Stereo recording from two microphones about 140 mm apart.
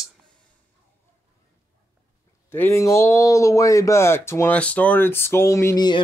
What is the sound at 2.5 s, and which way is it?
Speech, 15° left (ahead or behind).